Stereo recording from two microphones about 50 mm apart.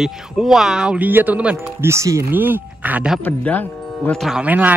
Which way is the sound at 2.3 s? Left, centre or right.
Right.